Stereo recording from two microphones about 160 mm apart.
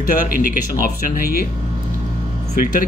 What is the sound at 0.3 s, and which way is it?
Speech, 65° left (ahead or behind).